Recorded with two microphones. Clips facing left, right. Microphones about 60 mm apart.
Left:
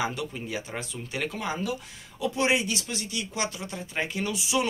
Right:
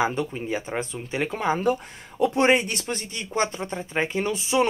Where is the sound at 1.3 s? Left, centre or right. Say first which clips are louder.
Right 8 dB; right.